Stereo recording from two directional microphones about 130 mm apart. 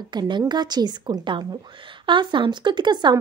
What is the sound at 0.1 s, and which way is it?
A woman's voice, 35° right (ahead or behind).